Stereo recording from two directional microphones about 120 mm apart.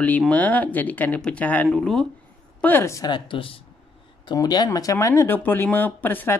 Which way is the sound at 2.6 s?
20° left (ahead or behind).